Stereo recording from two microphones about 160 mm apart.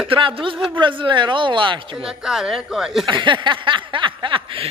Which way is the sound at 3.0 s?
30° right (ahead or behind).